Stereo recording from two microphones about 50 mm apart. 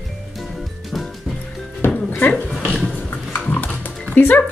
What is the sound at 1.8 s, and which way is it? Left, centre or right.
Music, left.